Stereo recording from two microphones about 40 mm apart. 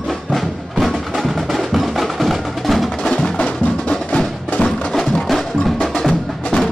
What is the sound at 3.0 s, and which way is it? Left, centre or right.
Music, centre.